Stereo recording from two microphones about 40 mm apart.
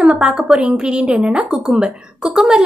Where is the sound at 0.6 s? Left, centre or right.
Right.